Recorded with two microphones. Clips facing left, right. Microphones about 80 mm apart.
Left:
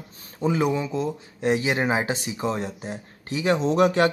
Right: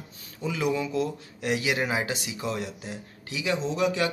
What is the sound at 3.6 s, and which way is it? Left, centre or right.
Speech, left.